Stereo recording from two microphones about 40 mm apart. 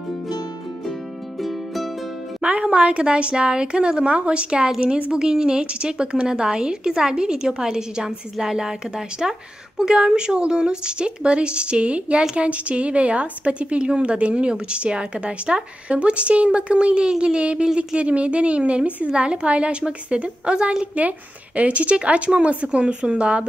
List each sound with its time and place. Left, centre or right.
1.4 s music: centre
2.4 s speech: right
5.1 s speech: centre